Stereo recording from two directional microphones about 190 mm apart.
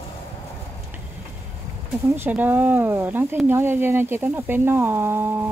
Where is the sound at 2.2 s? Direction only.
10° right (ahead or behind).